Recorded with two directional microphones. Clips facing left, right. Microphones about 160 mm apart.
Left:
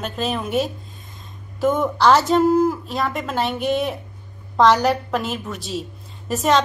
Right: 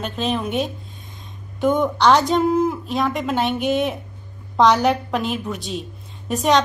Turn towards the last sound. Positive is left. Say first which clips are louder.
# right 1 dB
turn(degrees=0)  # may be behind; listen again after turning